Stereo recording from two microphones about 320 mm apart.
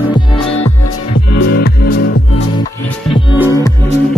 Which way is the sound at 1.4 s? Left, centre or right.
Left.